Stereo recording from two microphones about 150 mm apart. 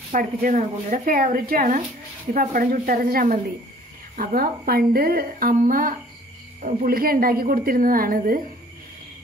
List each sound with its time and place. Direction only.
0.1 s speech: 65° right (ahead or behind)